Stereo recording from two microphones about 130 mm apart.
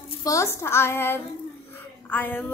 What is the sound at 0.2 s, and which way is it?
A woman's voice, 25° left (ahead or behind).